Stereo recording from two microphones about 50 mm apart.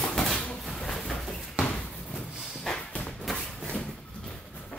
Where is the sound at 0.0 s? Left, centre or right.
Centre.